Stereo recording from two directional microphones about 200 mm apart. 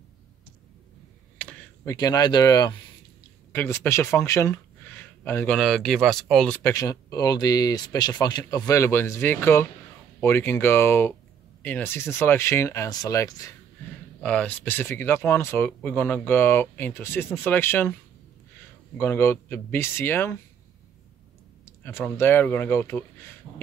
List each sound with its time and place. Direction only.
1.4 s a sound: 5° left (ahead or behind)
2.0 s speech: 20° left (ahead or behind)
5.6 s speech: centre (ahead or behind)
18.9 s speech: 10° left (ahead or behind)
21.6 s speech: 10° left (ahead or behind)
23.5 s beatboxing: 5° left (ahead or behind)